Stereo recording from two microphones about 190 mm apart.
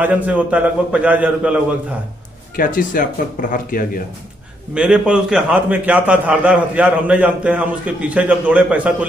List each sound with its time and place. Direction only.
0.0 s a man's voice: 5° right (ahead or behind)
2.5 s speech: 45° left (ahead or behind)
4.7 s a man's voice: 5° right (ahead or behind)